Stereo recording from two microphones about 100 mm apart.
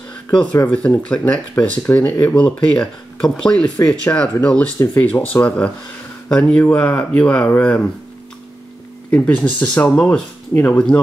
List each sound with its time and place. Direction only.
0.3 s speech: 10° left (ahead or behind)
9.1 s speech: 15° left (ahead or behind)